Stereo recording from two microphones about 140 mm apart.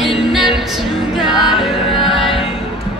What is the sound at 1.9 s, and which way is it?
Music, 40° left (ahead or behind).